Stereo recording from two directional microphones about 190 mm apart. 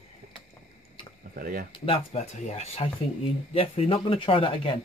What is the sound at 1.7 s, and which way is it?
A man's voice, 30° left (ahead or behind).